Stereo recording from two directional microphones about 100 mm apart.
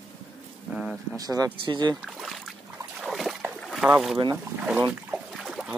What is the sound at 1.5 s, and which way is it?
Speech, 55° right (ahead or behind).